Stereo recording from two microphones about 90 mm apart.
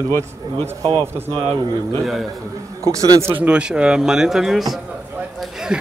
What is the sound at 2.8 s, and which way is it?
Speech, 35° right (ahead or behind).